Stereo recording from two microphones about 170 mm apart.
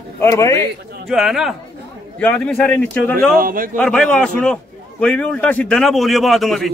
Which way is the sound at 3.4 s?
55° right (ahead or behind).